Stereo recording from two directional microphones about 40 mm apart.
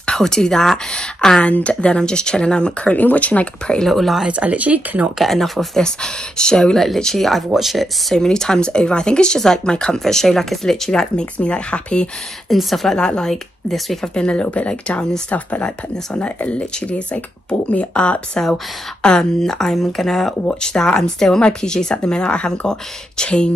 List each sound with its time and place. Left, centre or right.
0.0 s speech: centre
1.4 s speech: left
2.9 s speech: left
3.8 s speech: centre
4.3 s speech: right
5.2 s speech: centre
5.8 s speech: centre
8.2 s speech: centre
11.3 s speech: left
12.4 s speech: centre
12.9 s speech: centre
14.0 s speech: left